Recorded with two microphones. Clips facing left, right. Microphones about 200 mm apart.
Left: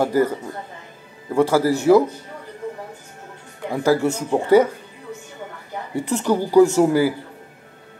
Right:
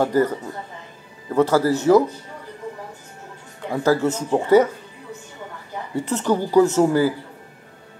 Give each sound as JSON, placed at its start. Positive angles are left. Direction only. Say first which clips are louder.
{"t": 0.0, "sound": "speech", "louder": "even", "side_deg": 10}
{"t": 3.7, "sound": "speech", "louder": "left 1 dB", "side_deg": 10}
{"t": 5.9, "sound": "speech", "louder": "left 1 dB", "side_deg": 10}